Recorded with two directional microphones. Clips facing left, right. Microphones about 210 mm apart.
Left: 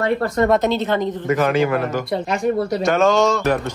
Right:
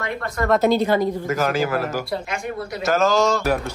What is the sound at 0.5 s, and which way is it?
Speech, 10° right (ahead or behind).